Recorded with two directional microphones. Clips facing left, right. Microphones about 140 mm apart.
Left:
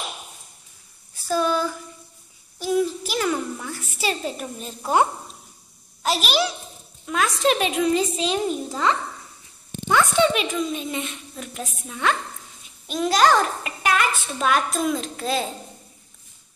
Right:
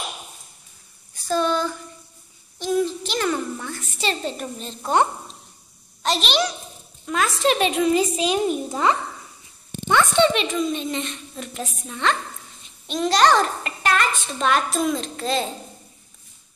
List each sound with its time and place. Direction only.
1.1 s a sound: 5° left (ahead or behind)
6.0 s a child's voice: 5° left (ahead or behind); by 8.9 s 15° right (ahead or behind)
9.8 s a woman's voice: 5° left (ahead or behind)